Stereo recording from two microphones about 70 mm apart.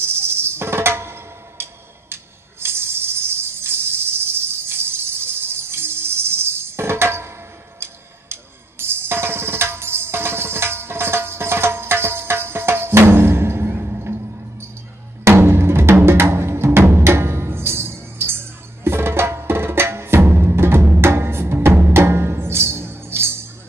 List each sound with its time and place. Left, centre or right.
0.0 s music: right
2.6 s a sound: right
7.8 s music: right